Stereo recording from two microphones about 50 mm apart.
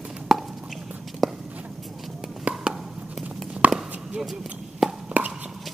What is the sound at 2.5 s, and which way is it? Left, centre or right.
Chop, right.